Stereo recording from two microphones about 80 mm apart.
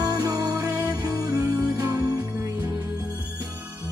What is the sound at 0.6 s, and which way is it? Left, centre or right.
Music, right.